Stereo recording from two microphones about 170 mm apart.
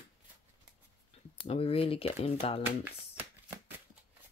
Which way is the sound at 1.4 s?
35° left (ahead or behind).